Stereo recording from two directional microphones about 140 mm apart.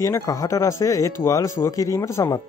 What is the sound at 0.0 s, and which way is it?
Speech, 20° left (ahead or behind).